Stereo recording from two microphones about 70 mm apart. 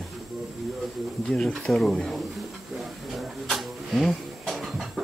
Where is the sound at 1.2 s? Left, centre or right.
Centre.